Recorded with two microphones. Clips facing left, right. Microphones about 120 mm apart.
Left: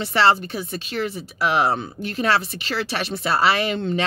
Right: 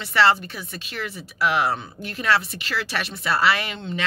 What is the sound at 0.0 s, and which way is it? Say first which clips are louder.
Speech: left 1 dB; 30° left (ahead or behind).